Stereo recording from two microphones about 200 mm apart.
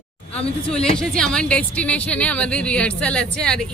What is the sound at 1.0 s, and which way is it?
Speech, 5° left (ahead or behind).